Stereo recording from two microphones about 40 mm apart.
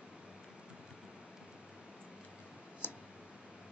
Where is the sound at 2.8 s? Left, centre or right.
Left.